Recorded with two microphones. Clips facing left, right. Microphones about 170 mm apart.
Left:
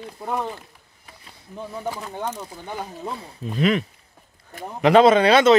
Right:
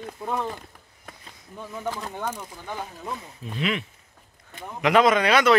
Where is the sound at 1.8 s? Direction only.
10° left (ahead or behind).